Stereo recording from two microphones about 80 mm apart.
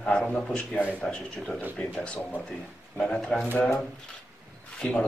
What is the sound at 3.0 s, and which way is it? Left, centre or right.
Speech, centre.